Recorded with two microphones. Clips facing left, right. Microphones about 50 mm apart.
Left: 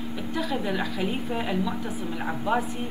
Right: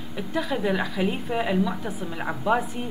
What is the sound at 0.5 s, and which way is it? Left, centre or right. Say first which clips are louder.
A woman's voice: right 5 dB; right.